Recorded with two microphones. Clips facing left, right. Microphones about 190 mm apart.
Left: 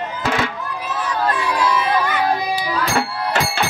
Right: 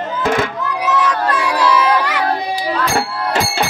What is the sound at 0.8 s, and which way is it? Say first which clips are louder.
Crowd: right 5 dB; 85° right.